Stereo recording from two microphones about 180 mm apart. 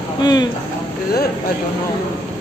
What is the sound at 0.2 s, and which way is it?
Speech, 25° left (ahead or behind).